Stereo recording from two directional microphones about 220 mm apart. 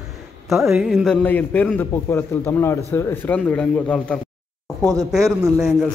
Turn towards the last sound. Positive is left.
turn(degrees=0)  # may be behind; listen again after turning